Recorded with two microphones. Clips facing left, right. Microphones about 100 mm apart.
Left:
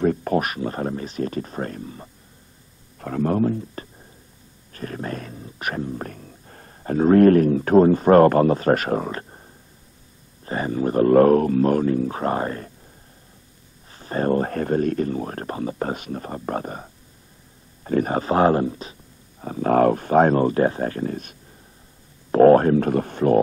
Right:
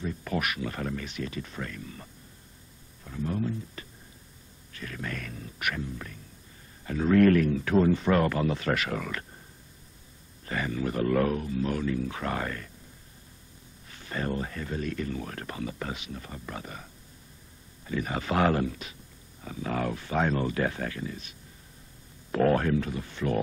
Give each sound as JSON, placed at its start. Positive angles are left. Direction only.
{"t": 0.0, "sound": "a sound", "side_deg": 55}
{"t": 0.3, "sound": "speech", "side_deg": 40}
{"t": 3.0, "sound": "speech", "side_deg": 60}
{"t": 3.8, "sound": "music", "side_deg": 40}
{"t": 4.7, "sound": "speech", "side_deg": 40}
{"t": 6.8, "sound": "speech", "side_deg": 40}
{"t": 10.4, "sound": "speech", "side_deg": 35}
{"t": 13.8, "sound": "speech", "side_deg": 35}
{"t": 19.4, "sound": "speech", "side_deg": 45}
{"t": 21.0, "sound": "speech", "side_deg": 50}
{"t": 22.8, "sound": "speech", "side_deg": 55}